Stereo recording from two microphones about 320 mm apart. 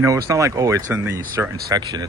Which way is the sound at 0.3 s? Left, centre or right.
Centre.